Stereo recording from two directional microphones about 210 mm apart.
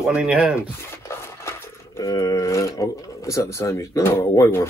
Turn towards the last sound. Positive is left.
turn(degrees=15)  # may be behind; listen again after turning